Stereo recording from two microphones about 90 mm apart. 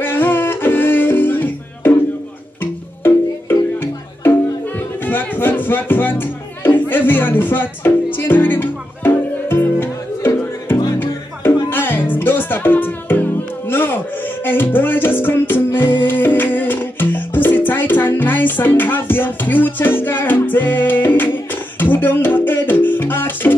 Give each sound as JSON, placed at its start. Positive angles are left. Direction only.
{"t": 0.0, "sound": "music", "side_deg": 25}